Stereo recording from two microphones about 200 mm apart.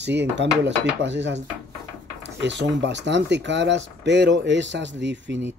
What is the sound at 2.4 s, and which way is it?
Speech, 60° right (ahead or behind).